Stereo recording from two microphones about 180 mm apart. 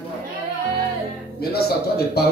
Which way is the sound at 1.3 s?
60° left (ahead or behind).